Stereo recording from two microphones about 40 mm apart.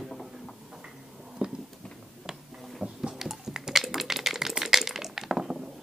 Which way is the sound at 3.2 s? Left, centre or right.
Centre.